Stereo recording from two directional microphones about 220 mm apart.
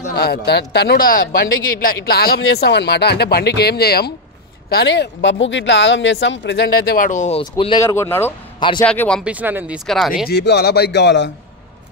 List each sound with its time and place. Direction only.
0.1 s a man's voice: 45° left (ahead or behind); by 9.2 s 5° left (ahead or behind)
9.2 s speech: 5° right (ahead or behind)
10.2 s speech: 50° left (ahead or behind)